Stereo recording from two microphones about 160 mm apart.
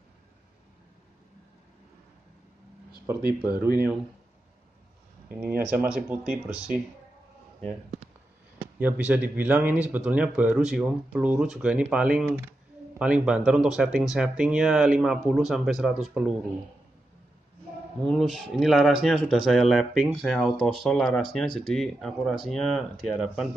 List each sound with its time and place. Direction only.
3.5 s speech: 70° right (ahead or behind)
5.6 s speech: 5° right (ahead or behind)
8.5 s speech: 10° right (ahead or behind)
18.0 s speech: centre (ahead or behind)